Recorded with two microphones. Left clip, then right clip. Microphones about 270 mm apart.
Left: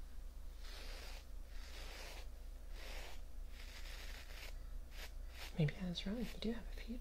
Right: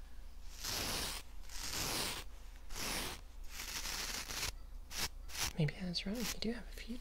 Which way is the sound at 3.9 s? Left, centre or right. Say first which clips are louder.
Right 13 dB; right.